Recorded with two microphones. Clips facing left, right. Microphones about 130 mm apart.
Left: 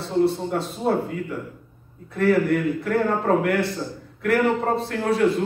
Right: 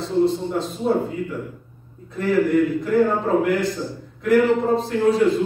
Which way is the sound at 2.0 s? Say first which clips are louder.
Even; 65° left (ahead or behind).